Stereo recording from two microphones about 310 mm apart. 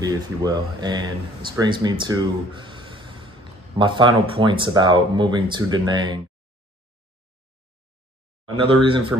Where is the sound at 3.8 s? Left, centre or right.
Centre.